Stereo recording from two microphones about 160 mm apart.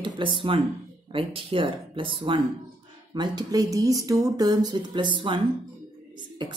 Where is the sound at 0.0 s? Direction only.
30° right (ahead or behind).